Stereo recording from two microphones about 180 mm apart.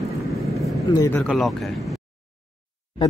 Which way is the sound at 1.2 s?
Centre (ahead or behind).